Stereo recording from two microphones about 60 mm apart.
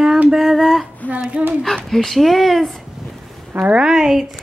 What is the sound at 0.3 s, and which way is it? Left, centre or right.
Child singing, centre.